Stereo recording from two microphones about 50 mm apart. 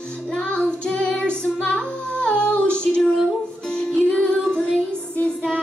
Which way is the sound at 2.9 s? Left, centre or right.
Centre.